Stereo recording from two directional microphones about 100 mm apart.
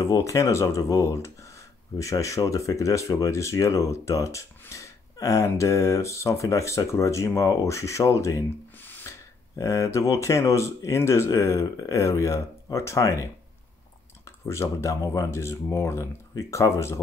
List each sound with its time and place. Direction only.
0.0 s speech: 35° left (ahead or behind)
8.8 s a sound: 20° left (ahead or behind)
9.6 s speech: 30° left (ahead or behind)
14.5 s speech: 30° left (ahead or behind)